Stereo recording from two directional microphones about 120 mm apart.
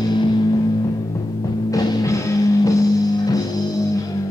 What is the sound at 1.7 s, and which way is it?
Music, 25° left (ahead or behind).